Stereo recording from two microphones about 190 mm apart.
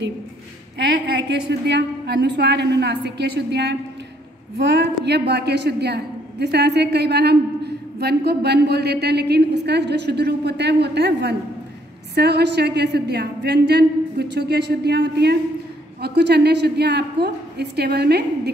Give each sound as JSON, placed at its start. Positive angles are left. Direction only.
{"t": 1.5, "sound": "a woman's voice", "side_deg": -65}